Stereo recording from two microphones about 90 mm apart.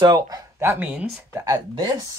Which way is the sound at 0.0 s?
45° right (ahead or behind).